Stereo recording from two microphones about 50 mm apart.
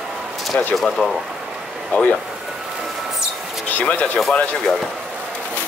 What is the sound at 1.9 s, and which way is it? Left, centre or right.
Speech, left.